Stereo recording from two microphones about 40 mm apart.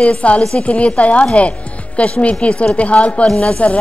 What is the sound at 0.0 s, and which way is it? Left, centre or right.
A woman's voice, left.